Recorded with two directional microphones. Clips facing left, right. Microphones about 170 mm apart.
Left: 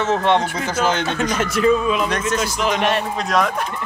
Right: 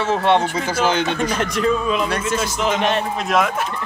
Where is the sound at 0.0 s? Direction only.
10° right (ahead or behind).